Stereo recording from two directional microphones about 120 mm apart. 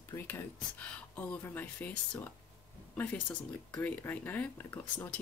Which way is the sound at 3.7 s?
15° left (ahead or behind).